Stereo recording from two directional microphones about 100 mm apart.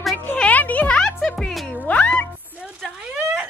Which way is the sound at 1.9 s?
15° left (ahead or behind).